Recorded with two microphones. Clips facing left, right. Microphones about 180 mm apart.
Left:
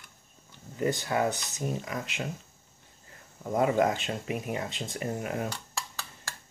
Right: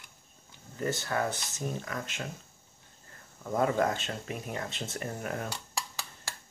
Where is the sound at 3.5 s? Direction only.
15° left (ahead or behind).